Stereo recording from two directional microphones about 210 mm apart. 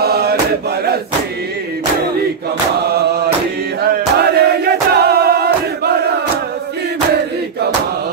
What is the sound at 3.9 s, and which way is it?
Music, 50° right (ahead or behind).